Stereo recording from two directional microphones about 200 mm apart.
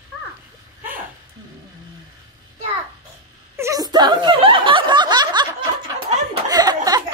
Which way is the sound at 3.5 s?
15° right (ahead or behind).